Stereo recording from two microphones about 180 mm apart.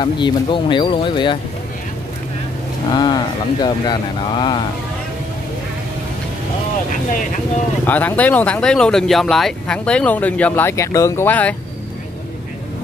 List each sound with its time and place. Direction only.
0.0 s speech: 25° left (ahead or behind)
2.9 s speech: 25° left (ahead or behind)
7.8 s speech: 10° left (ahead or behind)